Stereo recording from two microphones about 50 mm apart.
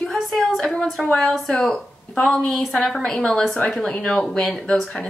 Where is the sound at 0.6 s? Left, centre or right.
Centre.